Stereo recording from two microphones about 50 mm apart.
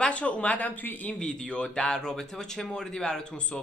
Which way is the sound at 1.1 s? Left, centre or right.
Centre.